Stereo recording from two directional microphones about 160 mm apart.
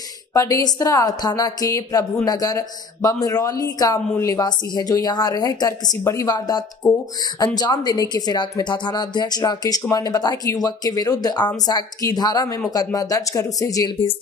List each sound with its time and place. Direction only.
0.3 s speech: 20° left (ahead or behind)